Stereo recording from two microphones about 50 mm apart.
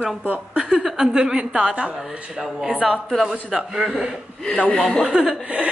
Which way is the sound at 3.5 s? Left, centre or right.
Centre.